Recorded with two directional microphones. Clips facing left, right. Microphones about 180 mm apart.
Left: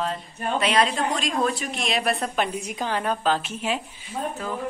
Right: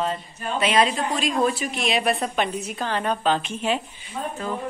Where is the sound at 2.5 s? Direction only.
15° left (ahead or behind).